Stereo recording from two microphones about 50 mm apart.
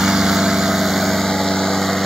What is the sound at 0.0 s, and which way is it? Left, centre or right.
Lawn mower, centre.